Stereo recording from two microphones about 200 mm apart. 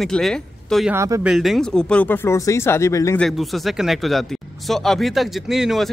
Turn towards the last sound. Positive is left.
turn(degrees=0)  # may be behind; listen again after turning